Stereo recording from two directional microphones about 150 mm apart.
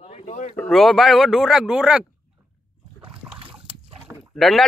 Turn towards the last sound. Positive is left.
turn(degrees=0)  # may be behind; listen again after turning